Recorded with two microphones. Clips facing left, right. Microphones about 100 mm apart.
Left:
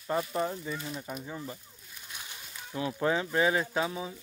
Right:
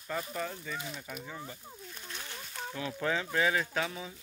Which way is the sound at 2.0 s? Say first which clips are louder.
Right 1 dB; 15° left (ahead or behind).